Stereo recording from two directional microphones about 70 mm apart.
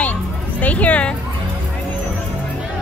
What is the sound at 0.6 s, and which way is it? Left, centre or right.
Speech, left.